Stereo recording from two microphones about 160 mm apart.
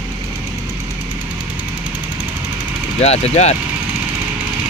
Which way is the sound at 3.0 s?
40° left (ahead or behind).